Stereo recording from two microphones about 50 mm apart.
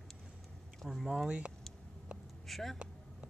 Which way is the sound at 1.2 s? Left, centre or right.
Right.